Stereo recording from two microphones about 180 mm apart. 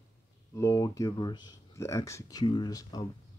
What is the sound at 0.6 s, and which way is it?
Speech, 20° left (ahead or behind).